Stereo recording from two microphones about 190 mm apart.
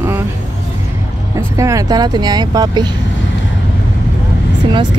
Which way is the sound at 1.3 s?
15° right (ahead or behind).